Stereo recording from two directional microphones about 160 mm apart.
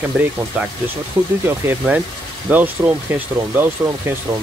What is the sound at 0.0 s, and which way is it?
Speech, 10° right (ahead or behind).